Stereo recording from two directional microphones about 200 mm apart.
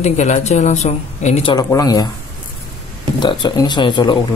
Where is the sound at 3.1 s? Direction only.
20° left (ahead or behind).